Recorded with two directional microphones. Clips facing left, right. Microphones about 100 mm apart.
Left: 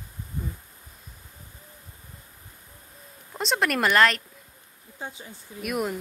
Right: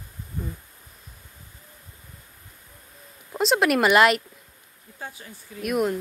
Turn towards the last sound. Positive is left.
turn(degrees=0)  # may be behind; listen again after turning